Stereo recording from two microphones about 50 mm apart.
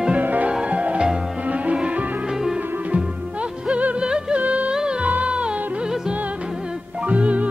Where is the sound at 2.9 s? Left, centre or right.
Right.